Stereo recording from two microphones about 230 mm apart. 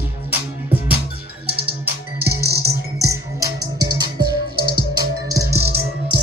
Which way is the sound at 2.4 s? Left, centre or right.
Right.